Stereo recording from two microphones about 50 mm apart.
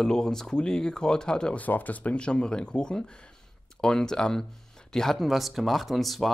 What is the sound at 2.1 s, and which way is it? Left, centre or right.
Speech, centre.